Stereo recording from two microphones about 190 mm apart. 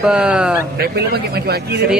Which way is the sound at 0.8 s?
55° right (ahead or behind).